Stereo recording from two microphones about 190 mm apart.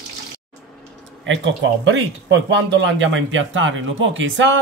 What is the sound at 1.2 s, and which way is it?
Speech, 75° right (ahead or behind).